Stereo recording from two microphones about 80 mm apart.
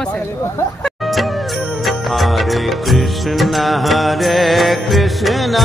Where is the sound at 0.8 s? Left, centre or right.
Centre.